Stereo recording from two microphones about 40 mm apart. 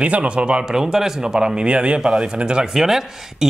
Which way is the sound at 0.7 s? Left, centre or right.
Centre.